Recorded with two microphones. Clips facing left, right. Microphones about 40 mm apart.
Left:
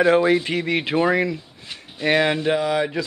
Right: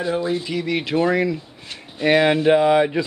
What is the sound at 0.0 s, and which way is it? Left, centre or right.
Speech, left.